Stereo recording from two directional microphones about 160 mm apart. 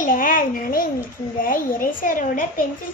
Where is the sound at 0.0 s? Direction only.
60° left (ahead or behind).